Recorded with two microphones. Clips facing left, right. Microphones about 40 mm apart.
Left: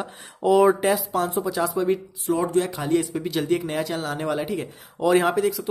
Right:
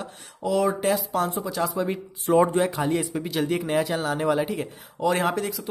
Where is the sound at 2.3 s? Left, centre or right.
Right.